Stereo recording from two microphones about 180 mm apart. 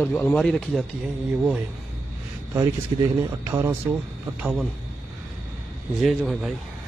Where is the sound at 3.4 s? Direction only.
15° right (ahead or behind).